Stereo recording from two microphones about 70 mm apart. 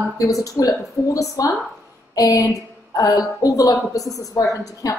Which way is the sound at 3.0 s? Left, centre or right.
Left.